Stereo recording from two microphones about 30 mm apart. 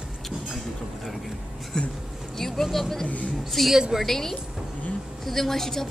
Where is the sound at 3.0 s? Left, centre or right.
Left.